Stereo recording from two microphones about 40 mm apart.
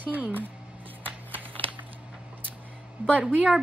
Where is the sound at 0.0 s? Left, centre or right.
Right.